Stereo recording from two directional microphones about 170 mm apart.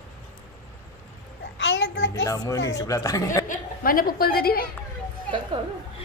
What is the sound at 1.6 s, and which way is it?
Child singing, 90° left.